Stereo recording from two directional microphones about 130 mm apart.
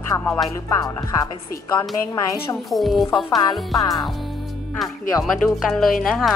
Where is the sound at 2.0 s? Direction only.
25° left (ahead or behind).